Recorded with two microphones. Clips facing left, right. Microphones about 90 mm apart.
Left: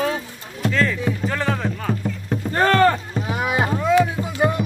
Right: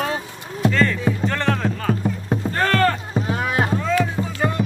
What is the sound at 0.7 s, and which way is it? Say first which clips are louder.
Music: right 1 dB; centre (ahead or behind).